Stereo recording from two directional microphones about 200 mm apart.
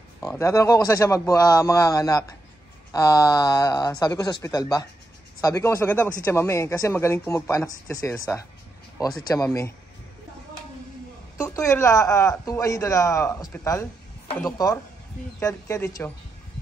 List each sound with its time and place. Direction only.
0.2 s speech: 15° left (ahead or behind)
11.4 s speech: 15° left (ahead or behind)